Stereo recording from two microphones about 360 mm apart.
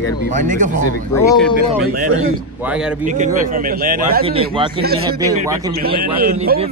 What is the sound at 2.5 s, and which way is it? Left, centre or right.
Speech, centre.